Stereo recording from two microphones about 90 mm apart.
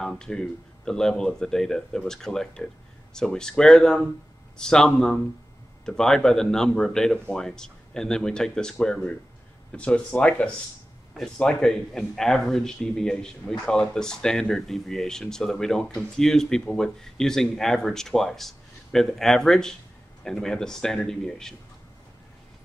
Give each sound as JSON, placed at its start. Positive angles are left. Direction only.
{"t": 0.0, "sound": "a man's voice", "side_deg": 5}